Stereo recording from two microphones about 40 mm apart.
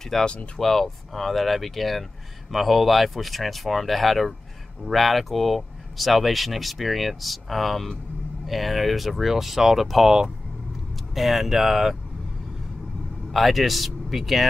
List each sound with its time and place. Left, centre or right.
0.2 s speech: left
0.6 s speech: centre
11.1 s speech: centre
13.3 s speech: centre